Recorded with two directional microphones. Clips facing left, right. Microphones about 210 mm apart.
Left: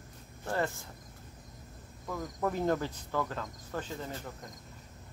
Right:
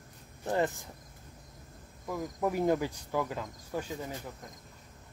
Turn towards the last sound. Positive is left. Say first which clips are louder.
# right 1 dB
turn(degrees=-10)  # may be behind; listen again after turning